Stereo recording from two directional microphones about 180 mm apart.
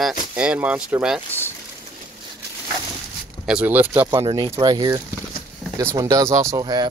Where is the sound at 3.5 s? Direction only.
10° right (ahead or behind).